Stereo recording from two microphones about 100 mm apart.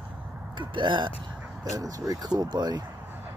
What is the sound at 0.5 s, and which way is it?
Speech, 50° right (ahead or behind).